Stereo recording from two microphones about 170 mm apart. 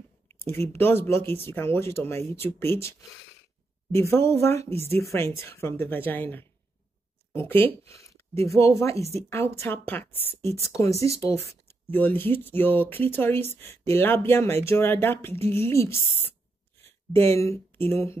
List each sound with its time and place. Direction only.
0.5 s speech: 15° left (ahead or behind)